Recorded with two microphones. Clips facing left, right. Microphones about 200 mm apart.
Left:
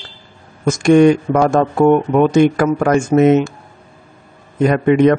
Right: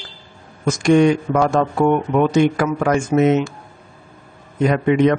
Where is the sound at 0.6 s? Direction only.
50° left (ahead or behind).